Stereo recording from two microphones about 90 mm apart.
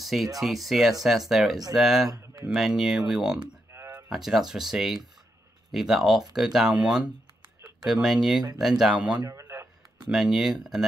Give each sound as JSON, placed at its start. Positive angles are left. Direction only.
{"t": 0.0, "sound": "speech", "side_deg": 0}
{"t": 2.0, "sound": "speech", "side_deg": -40}
{"t": 2.5, "sound": "speech", "side_deg": -5}
{"t": 3.7, "sound": "a sound", "side_deg": -30}
{"t": 4.1, "sound": "speech", "side_deg": -5}
{"t": 9.3, "sound": "a sound", "side_deg": -30}
{"t": 10.0, "sound": "speech", "side_deg": -5}